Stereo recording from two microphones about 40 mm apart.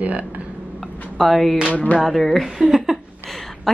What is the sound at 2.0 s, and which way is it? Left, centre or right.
Speech, centre.